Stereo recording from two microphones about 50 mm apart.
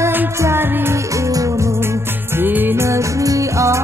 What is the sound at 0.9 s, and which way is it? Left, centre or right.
Music, right.